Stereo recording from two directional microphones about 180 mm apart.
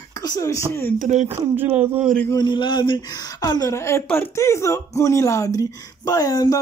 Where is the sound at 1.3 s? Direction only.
15° right (ahead or behind).